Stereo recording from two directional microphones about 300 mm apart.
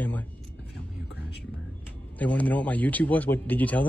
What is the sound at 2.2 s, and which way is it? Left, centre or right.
Speech, centre.